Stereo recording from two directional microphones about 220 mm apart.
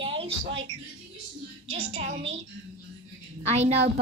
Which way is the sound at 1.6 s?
25° right (ahead or behind).